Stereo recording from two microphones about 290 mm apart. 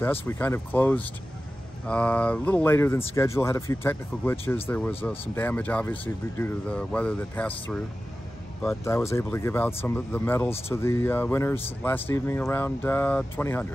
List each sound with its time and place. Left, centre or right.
0.0 s speech: centre